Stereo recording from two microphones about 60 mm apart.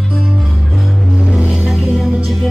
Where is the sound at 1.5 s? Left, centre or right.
Centre.